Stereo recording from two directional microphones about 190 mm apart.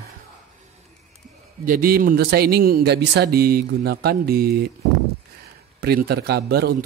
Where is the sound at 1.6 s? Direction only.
50° right (ahead or behind).